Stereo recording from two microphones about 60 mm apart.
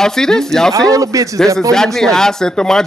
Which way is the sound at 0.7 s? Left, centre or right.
Right.